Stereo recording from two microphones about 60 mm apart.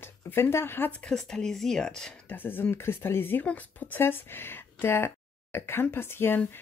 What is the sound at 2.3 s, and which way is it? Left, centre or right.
Speech, left.